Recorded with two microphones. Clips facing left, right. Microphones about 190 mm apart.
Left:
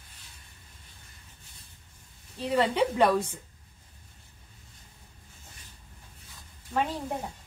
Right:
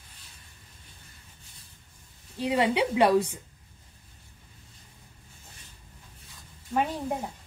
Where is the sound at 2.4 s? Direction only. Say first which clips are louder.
Even; 15° right (ahead or behind).